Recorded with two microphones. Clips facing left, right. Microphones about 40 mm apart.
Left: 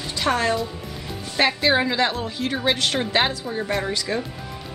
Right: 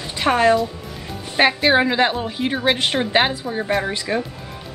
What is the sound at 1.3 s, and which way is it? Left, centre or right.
A woman's voice, right.